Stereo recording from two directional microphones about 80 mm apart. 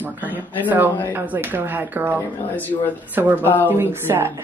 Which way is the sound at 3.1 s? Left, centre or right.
Right.